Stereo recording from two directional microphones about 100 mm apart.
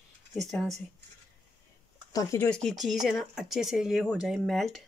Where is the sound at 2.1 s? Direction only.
35° left (ahead or behind).